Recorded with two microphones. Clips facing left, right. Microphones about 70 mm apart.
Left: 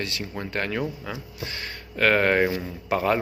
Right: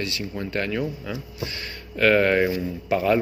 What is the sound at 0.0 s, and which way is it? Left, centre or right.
A man's voice, left.